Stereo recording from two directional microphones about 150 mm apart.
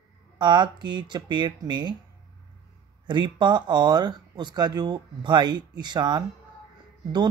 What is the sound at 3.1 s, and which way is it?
Speech, 30° right (ahead or behind).